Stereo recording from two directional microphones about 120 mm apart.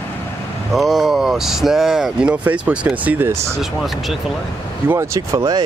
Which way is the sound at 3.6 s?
Centre (ahead or behind).